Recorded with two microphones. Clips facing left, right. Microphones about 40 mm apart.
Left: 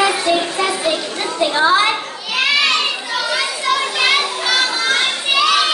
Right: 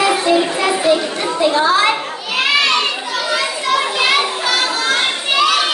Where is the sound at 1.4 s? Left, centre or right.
Centre.